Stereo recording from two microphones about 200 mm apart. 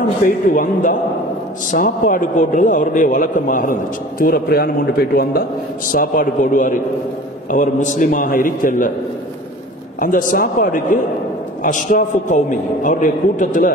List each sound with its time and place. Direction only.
0.2 s a man's voice: 40° left (ahead or behind)
9.9 s a man's voice: 45° left (ahead or behind)